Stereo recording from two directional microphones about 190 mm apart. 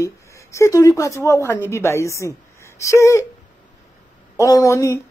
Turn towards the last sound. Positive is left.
turn(degrees=15)  # may be behind; listen again after turning